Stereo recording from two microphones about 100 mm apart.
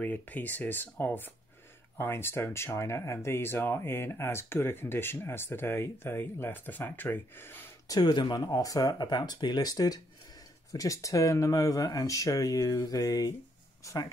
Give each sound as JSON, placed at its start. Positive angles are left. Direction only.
{"t": 0.0, "sound": "speech", "side_deg": 15}
{"t": 7.9, "sound": "speech", "side_deg": 45}